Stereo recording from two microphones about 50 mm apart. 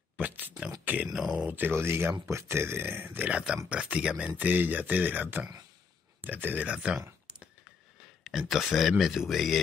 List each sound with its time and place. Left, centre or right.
0.2 s speech: right
1.0 s speech: centre
1.5 s speech: right
2.2 s speech: right
3.3 s speech: right
4.4 s speech: right
6.7 s speech: centre
8.2 s speech: centre